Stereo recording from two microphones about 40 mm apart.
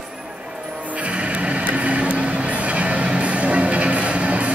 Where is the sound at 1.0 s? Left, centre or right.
Right.